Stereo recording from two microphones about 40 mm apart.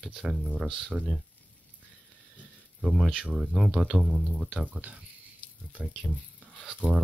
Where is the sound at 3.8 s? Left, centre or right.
Centre.